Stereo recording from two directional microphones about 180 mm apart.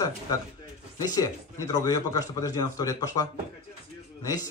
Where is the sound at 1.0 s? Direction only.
20° left (ahead or behind).